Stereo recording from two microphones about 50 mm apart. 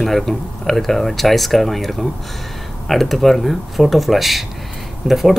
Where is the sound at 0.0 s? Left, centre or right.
Centre.